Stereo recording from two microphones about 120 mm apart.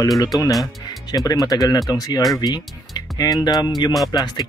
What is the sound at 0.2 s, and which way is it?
Speech, 30° left (ahead or behind).